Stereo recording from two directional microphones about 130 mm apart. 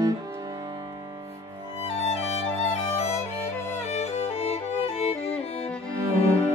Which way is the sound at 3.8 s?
55° left (ahead or behind).